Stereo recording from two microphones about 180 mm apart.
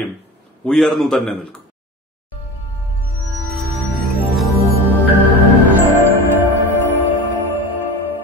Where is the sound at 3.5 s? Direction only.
Centre (ahead or behind).